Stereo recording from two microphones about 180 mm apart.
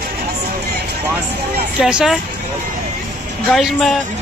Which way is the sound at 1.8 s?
5° right (ahead or behind).